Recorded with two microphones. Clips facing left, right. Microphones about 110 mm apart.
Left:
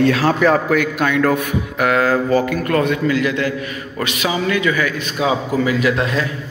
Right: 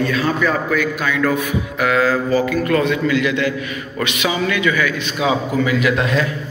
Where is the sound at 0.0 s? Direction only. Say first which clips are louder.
Left 4 dB; 80° left; by 6.2 s 35° left (ahead or behind).